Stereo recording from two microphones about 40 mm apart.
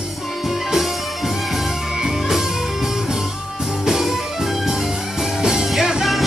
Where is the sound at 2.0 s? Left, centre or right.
Centre.